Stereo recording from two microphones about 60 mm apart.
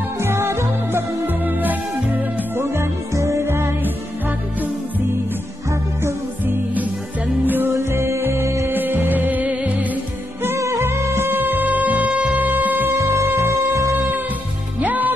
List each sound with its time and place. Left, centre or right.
0.2 s music: right
2.6 s music: right
3.4 s music: right
6.4 s music: right
7.7 s music: right
8.6 s music: right
10.6 s music: right
13.0 s music: right
14.8 s music: right